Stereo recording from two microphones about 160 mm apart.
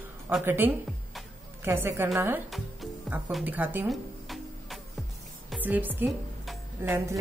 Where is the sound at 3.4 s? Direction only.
10° right (ahead or behind).